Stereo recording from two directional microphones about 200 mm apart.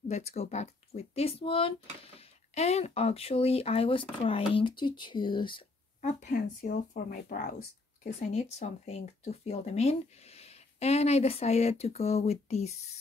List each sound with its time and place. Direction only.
0.1 s speech: 35° left (ahead or behind)
5.9 s speech: 35° left (ahead or behind)
8.0 s speech: 35° left (ahead or behind)